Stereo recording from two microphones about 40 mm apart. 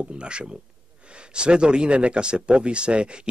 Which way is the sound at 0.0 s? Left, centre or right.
Right.